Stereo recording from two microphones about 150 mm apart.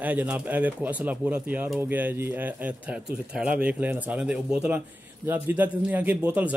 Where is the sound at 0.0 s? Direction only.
10° right (ahead or behind).